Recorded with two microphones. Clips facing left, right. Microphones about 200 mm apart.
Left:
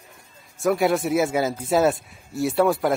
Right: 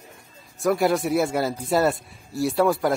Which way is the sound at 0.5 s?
Centre (ahead or behind).